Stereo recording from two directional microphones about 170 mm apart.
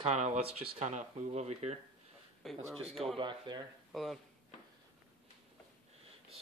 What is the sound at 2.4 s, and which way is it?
Speech, centre (ahead or behind).